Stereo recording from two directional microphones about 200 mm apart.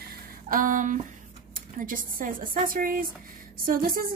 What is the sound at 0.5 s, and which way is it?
A woman's voice, 40° right (ahead or behind).